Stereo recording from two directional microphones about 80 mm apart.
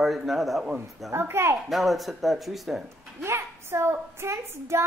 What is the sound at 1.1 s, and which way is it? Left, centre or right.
Speech, right.